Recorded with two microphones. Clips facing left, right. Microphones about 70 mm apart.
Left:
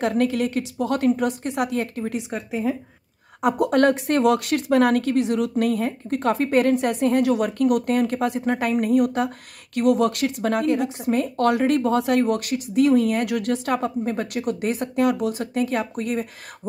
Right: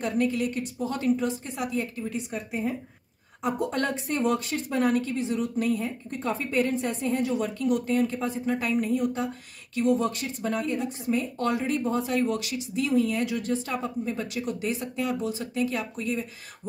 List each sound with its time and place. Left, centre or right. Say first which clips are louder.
0.0 s a woman's voice: left 5 dB; left
3.4 s speech: left 9 dB; left